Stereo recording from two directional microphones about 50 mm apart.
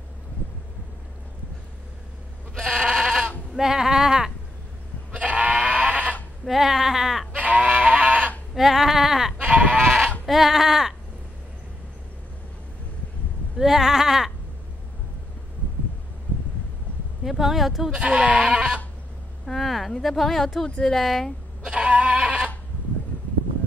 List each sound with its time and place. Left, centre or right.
2.6 s goat: centre
5.1 s goat: right
6.4 s speech: centre
7.3 s goat: right
8.5 s a sound: centre
9.4 s sheep: right
10.2 s speech: centre
13.6 s speech: centre
17.2 s speech: centre
17.9 s goat: right
19.4 s speech: centre
21.6 s goat: right